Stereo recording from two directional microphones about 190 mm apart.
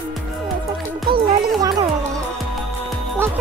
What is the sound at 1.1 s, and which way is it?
Speech, 20° right (ahead or behind).